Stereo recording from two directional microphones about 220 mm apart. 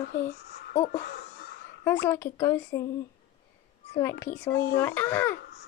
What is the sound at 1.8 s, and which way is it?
Speech, 10° left (ahead or behind).